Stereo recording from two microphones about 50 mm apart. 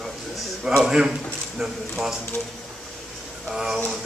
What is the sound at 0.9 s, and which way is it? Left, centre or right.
Speech, centre.